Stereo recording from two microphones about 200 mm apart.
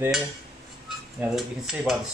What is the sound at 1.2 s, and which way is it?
Speech, centre (ahead or behind).